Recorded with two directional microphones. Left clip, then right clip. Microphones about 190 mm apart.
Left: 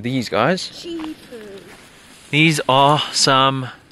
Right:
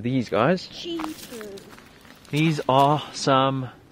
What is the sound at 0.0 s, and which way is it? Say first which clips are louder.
Speech: left 4 dB; 5° right (ahead or behind).